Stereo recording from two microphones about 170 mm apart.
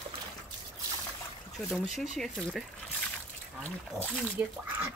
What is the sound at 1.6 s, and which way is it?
Speech, centre (ahead or behind).